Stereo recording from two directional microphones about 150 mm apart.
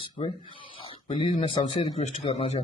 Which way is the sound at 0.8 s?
40° left (ahead or behind).